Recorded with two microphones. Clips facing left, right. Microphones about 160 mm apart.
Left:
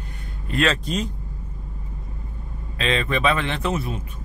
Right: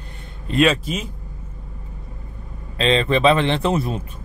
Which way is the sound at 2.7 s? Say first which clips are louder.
Right 5 dB; 30° right (ahead or behind).